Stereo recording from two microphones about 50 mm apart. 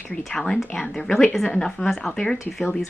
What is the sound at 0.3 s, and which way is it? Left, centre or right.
Speech, centre.